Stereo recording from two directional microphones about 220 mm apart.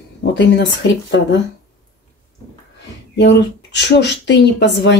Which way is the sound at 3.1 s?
50° left (ahead or behind).